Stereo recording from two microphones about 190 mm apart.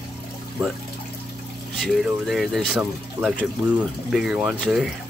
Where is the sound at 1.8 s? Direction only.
Centre (ahead or behind).